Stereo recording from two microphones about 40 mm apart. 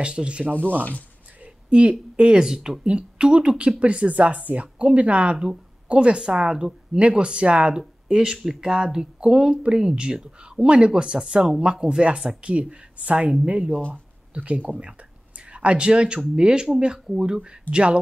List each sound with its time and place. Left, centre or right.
0.0 s speech: right
1.4 s a sound: right
2.4 s speech: centre
2.8 s speech: right
7.0 s speech: right
8.1 s speech: centre
12.4 s speech: right
17.4 s speech: right